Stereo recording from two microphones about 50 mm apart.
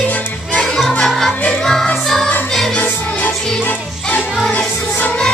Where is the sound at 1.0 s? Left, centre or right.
Centre.